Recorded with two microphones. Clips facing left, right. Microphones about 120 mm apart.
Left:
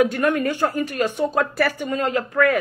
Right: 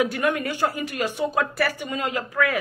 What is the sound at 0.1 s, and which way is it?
Speech, 10° right (ahead or behind).